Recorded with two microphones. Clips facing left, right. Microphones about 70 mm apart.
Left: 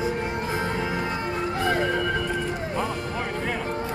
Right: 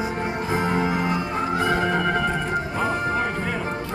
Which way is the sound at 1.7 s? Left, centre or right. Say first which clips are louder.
Even; right.